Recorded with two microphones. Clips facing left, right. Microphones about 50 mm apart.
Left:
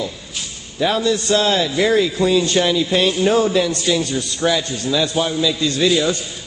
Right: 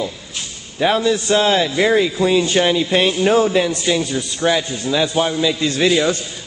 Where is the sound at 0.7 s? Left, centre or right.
Right.